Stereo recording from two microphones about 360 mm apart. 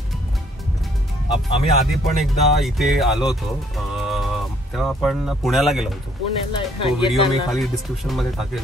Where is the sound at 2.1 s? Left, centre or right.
Centre.